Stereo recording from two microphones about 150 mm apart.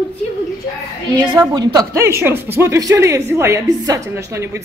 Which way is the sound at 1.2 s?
25° right (ahead or behind).